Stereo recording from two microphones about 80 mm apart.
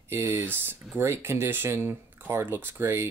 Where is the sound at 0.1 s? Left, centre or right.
Right.